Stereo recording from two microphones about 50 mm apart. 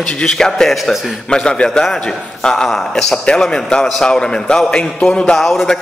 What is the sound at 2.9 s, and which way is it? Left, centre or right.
A man's voice, centre.